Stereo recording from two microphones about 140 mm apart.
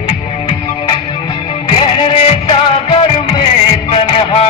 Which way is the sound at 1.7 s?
35° left (ahead or behind).